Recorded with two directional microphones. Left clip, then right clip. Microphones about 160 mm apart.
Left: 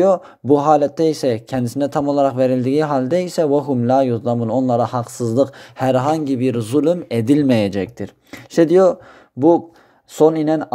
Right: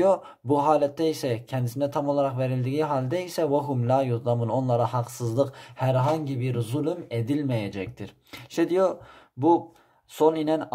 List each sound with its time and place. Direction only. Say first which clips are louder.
0.0 s speech: left 7 dB; 25° left (ahead or behind)
5.8 s a man's voice: left 8 dB; 50° left (ahead or behind)
8.0 s speech: left 10 dB; 30° left (ahead or behind)
10.1 s speech: left 8 dB; 30° left (ahead or behind)